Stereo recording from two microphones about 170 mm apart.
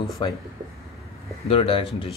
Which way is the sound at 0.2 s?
30° left (ahead or behind).